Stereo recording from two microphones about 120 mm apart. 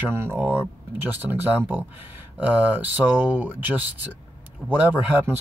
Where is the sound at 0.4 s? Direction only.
15° right (ahead or behind).